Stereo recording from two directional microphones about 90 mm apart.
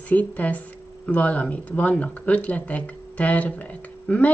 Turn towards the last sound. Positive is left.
turn(degrees=15)  # may be behind; listen again after turning